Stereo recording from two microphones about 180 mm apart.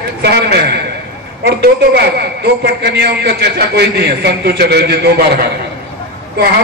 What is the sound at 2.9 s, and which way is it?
A man's voice, 65° right (ahead or behind).